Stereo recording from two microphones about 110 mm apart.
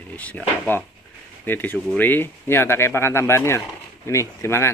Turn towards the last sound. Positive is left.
turn(degrees=25)  # may be behind; listen again after turning